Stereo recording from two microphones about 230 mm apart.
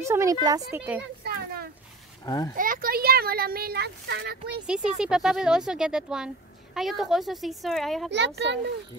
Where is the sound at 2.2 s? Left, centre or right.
Centre.